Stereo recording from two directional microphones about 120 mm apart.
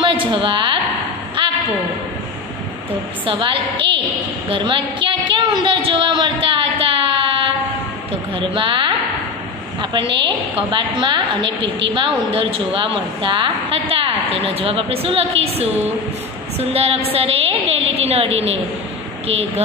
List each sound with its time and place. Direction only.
0.0 s a woman's voice: 45° right (ahead or behind)
1.4 s a sound: 40° right (ahead or behind)
3.3 s a woman's voice: 45° right (ahead or behind)